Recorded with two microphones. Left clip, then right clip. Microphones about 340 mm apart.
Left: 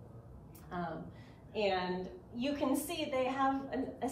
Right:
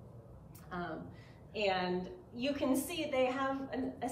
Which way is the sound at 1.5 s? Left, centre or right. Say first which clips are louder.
Even; centre.